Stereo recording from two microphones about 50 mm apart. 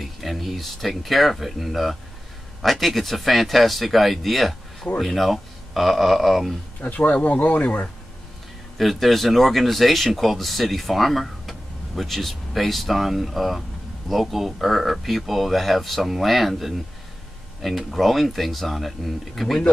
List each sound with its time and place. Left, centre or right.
0.0 s speech: centre
6.8 s speech: left
8.7 s speech: centre